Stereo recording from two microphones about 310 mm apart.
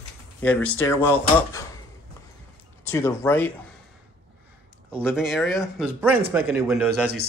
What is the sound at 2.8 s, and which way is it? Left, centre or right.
Speech, centre.